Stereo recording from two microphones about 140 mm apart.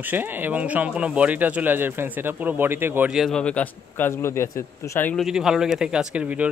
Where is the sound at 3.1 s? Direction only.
Centre (ahead or behind); by 5.1 s 20° left (ahead or behind).